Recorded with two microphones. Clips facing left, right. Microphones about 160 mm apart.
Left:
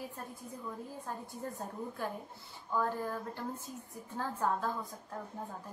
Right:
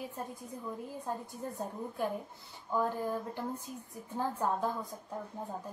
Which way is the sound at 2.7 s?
15° right (ahead or behind).